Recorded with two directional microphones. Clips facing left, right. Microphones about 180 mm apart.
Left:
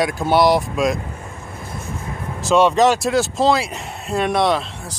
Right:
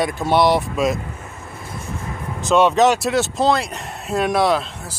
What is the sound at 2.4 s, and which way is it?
Speech, centre (ahead or behind).